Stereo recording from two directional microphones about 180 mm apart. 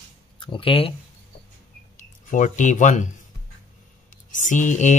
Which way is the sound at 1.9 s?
45° left (ahead or behind).